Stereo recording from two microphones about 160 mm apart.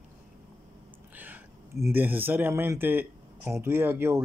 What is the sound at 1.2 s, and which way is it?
Speech, 15° right (ahead or behind).